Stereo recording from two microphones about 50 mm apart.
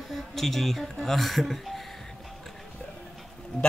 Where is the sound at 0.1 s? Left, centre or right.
Centre.